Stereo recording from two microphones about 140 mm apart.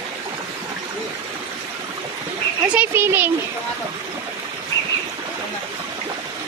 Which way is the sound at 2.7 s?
15° right (ahead or behind).